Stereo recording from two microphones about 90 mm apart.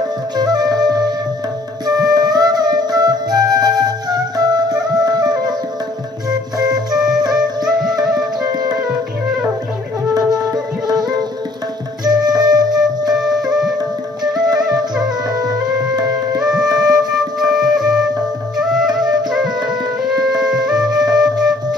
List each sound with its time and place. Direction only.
0.4 s music: 50° right (ahead or behind)
1.9 s flute: 45° right (ahead or behind)
6.6 s organ: 45° right (ahead or behind)
7.0 s music: 5° right (ahead or behind)
12.0 s flute: 50° right (ahead or behind)
13.1 s music: 5° right (ahead or behind)
16.3 s flute: 5° right (ahead or behind)
20.0 s music: 5° right (ahead or behind)